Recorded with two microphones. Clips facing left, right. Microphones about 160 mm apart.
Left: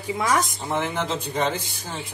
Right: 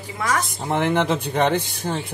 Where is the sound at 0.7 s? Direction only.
65° right (ahead or behind).